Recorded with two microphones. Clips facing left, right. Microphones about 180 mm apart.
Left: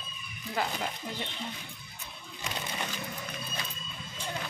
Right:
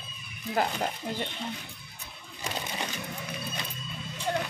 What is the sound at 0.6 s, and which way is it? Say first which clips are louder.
Speech: right 4 dB; 50° right (ahead or behind).